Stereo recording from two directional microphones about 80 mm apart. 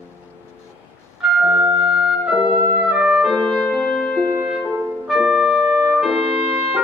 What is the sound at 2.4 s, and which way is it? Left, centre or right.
Music, right.